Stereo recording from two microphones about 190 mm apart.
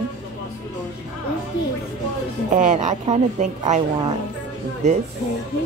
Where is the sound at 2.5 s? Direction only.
40° right (ahead or behind).